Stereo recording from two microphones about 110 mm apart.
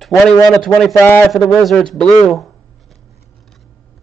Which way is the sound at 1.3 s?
Centre (ahead or behind).